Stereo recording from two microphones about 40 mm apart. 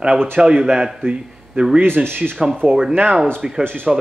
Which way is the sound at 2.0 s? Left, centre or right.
Right.